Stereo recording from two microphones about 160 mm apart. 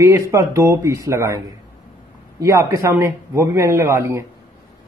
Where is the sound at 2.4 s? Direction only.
20° right (ahead or behind).